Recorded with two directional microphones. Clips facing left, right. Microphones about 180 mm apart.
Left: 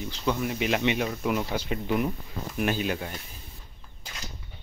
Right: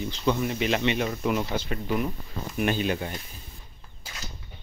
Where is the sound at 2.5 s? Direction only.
5° left (ahead or behind).